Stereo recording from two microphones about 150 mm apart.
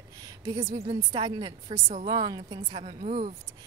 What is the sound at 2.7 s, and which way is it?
Speech, 40° right (ahead or behind).